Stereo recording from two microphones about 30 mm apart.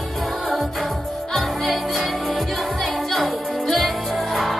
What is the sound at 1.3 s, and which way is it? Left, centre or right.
Music, centre.